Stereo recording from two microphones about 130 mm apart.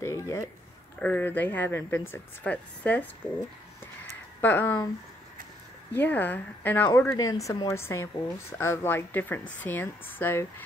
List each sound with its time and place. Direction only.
0.0 s a sound: 25° left (ahead or behind)
0.9 s speech: 10° left (ahead or behind)
4.4 s speech: 15° left (ahead or behind)
5.9 s a woman's voice: 15° left (ahead or behind)